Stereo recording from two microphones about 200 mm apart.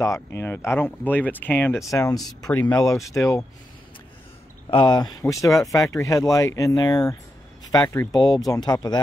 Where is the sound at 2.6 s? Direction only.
5° left (ahead or behind).